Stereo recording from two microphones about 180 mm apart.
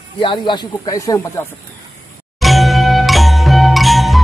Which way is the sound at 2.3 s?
Centre (ahead or behind).